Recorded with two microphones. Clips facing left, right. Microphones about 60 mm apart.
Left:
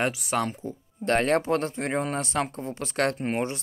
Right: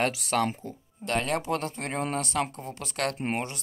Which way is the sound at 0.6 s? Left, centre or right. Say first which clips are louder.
Left 6 dB; left.